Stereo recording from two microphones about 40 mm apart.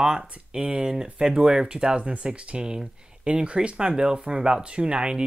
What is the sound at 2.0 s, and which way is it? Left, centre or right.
Speech, right.